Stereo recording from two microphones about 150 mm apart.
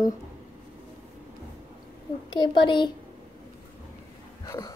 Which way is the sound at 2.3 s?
30° left (ahead or behind).